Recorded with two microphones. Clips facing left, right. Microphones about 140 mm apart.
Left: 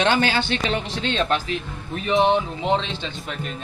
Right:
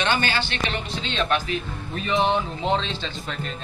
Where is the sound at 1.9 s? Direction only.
15° left (ahead or behind).